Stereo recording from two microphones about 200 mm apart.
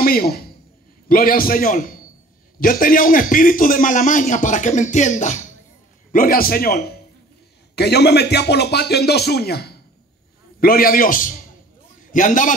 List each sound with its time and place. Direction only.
0.0 s a man's voice: 50° left (ahead or behind)